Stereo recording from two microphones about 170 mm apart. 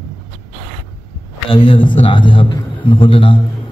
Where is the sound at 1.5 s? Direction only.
30° left (ahead or behind).